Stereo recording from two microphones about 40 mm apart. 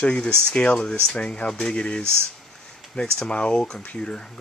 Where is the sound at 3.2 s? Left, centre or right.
Left.